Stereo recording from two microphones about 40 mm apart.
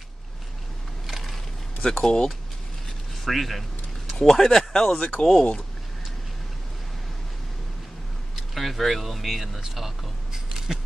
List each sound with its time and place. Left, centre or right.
1.0 s crushing: centre
1.9 s speech: centre
3.3 s speech: centre
8.5 s speech: centre
9.6 s single-lens reflex camera: centre